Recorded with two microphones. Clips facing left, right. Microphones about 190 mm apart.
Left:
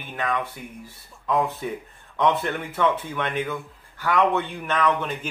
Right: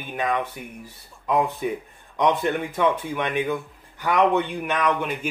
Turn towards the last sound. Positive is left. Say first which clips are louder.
# even
turn(degrees=-10)  # may be behind; listen again after turning